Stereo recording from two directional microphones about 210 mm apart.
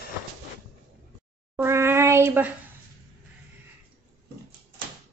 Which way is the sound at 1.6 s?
10° right (ahead or behind).